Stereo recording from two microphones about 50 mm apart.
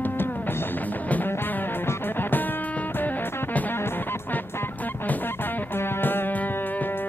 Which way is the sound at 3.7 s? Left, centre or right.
Left.